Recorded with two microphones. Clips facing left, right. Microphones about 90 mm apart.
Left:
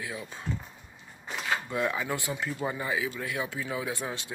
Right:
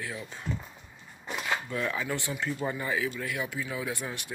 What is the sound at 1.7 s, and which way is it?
Speech, 20° left (ahead or behind).